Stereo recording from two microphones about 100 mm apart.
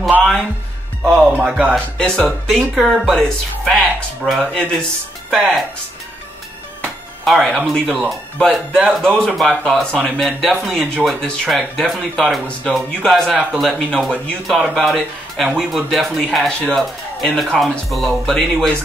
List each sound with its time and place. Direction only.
0.2 s music: centre (ahead or behind)
1.0 s speech: 15° right (ahead or behind)
1.7 s speech: 5° left (ahead or behind)
5.3 s speech: 5° right (ahead or behind)
7.2 s speech: centre (ahead or behind)
14.1 s speech: 10° left (ahead or behind)
14.6 s speech: centre (ahead or behind)